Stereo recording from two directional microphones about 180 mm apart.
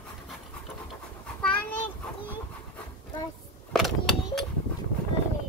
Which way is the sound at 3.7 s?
Centre (ahead or behind).